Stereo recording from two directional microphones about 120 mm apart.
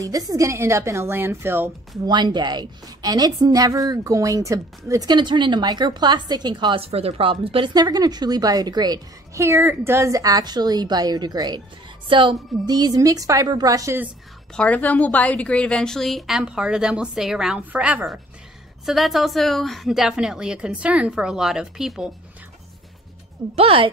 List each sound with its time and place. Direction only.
0.0 s a woman's voice: 30° right (ahead or behind)
2.0 s a woman's voice: 40° right (ahead or behind)
7.7 s a woman's voice: 35° right (ahead or behind)
14.5 s a woman's voice: 10° left (ahead or behind)
23.5 s a woman's voice: 50° right (ahead or behind)